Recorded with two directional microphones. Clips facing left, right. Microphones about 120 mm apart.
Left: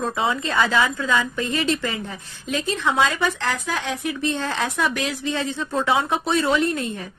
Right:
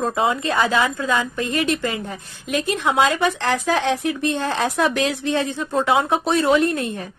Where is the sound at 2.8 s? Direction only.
20° right (ahead or behind).